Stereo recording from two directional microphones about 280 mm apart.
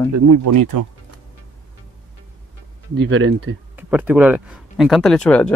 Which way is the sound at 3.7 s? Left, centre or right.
Centre.